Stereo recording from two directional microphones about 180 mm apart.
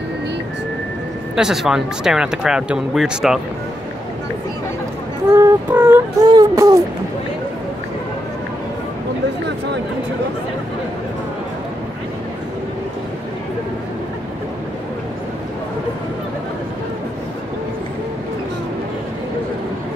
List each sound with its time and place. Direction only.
1.3 s speech: 5° right (ahead or behind)
5.3 s child singing: 10° right (ahead or behind)
6.2 s a sound: 20° right (ahead or behind)